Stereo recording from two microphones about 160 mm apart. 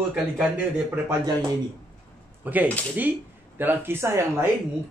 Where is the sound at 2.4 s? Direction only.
10° right (ahead or behind).